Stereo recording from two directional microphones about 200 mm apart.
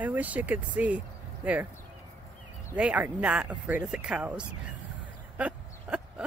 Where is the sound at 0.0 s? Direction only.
10° right (ahead or behind).